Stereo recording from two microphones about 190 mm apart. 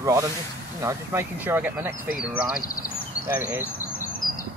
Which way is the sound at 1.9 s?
50° left (ahead or behind).